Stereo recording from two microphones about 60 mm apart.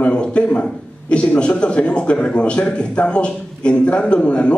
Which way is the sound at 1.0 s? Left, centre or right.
Centre.